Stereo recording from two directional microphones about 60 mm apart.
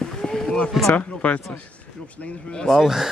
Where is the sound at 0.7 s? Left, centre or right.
Centre.